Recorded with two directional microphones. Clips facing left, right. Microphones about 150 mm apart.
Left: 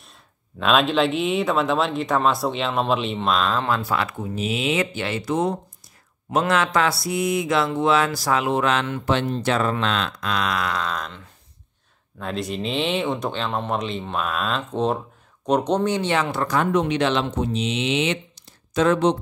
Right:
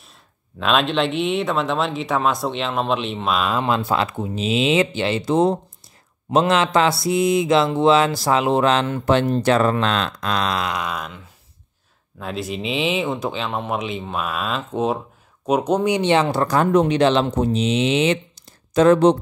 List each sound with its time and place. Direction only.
0.6 s speech: centre (ahead or behind); by 19.1 s 40° right (ahead or behind)